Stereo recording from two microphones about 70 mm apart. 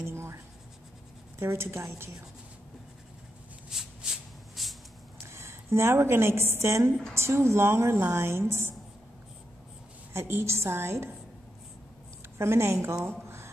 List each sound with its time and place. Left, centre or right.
0.0 s writing: right
1.4 s a woman's voice: right
3.7 s a sound: centre
5.2 s a woman's voice: right
10.1 s a woman's voice: right
12.4 s a woman's voice: right